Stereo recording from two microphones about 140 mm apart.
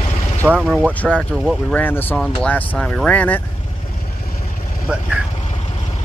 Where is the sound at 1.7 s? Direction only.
15° left (ahead or behind).